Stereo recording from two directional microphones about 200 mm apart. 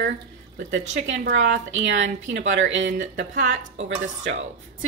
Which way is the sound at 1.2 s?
65° right (ahead or behind).